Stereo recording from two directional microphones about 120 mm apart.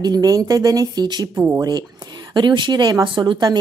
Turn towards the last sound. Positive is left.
turn(degrees=-35)  # may be behind; listen again after turning